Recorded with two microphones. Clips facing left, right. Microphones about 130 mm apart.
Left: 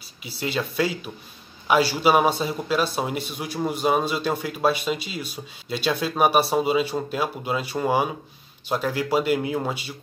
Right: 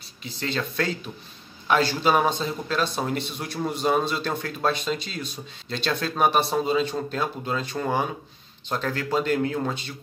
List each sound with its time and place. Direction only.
0.2 s speech: 10° left (ahead or behind)